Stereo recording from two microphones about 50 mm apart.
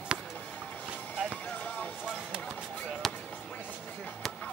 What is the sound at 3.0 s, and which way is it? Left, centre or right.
Basketball bounce, centre.